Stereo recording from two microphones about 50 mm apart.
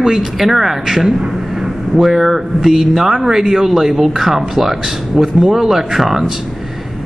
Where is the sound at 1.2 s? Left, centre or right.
Centre.